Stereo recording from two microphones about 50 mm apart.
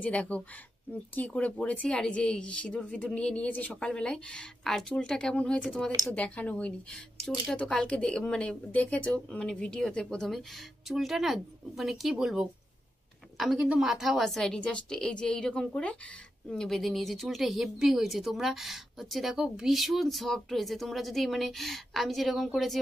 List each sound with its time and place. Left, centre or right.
0.0 s a woman's voice: left
10.1 s a woman's voice: centre; by 16.0 s left
16.4 s speech: centre
19.3 s speech: centre
19.7 s speech: centre